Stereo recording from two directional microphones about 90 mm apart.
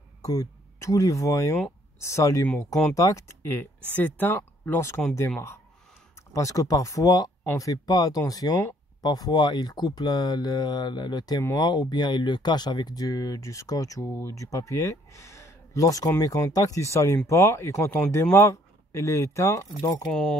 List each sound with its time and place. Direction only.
0.2 s speech: 40° left (ahead or behind)
6.3 s speech: 35° left (ahead or behind)
17.8 s speech: 20° left (ahead or behind); by 20.1 s 40° left (ahead or behind)
20.1 s speech: 10° left (ahead or behind)